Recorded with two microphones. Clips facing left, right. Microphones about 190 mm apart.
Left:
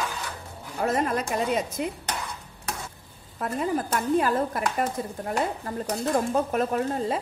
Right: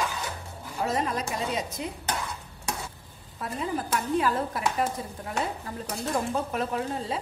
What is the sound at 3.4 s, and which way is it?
Speech, 50° left (ahead or behind).